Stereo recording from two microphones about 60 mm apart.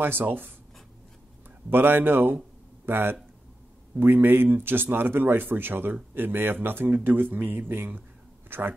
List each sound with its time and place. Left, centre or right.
0.0 s speech: right
1.7 s speech: right